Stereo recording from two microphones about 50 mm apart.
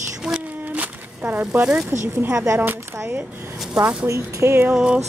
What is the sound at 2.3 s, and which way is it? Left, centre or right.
Speech, right.